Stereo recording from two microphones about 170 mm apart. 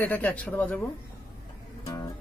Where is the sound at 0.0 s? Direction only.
10° left (ahead or behind).